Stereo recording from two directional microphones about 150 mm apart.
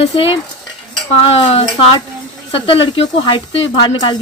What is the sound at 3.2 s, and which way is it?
Speech, 30° left (ahead or behind).